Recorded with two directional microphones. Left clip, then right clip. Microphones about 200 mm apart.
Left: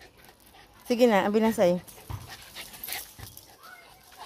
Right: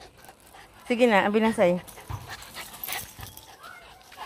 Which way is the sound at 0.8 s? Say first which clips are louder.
Right 1 dB; 5° left (ahead or behind).